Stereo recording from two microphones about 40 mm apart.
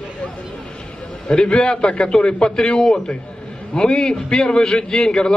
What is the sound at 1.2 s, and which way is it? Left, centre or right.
Speech, left.